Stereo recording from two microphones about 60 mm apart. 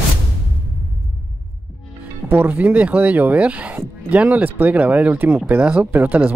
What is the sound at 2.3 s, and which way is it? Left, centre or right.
Speech, right.